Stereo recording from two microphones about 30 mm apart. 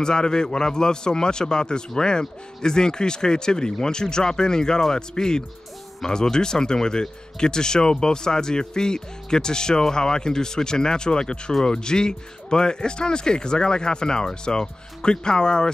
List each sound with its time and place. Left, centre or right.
0.0 s speech: left
6.0 s speech: centre
6.3 s speech: left